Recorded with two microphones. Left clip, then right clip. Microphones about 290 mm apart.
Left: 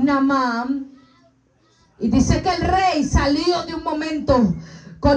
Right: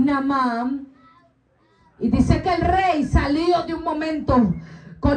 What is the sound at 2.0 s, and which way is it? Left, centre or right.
Speech, left.